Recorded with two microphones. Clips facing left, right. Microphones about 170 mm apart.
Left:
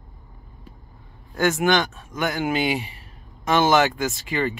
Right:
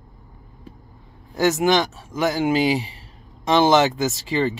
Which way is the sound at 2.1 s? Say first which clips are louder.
Right 5 dB; 25° right (ahead or behind).